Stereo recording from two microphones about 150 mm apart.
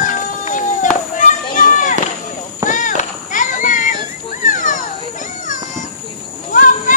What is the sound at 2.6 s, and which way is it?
Children playing, 60° left (ahead or behind).